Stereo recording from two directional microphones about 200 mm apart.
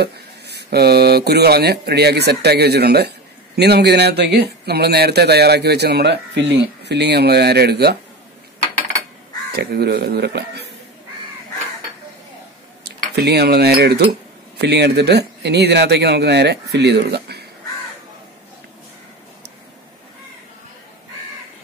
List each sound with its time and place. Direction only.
0.0 s speech: 55° right (ahead or behind)
9.5 s speech: 55° right (ahead or behind)
12.8 s speech: 55° right (ahead or behind)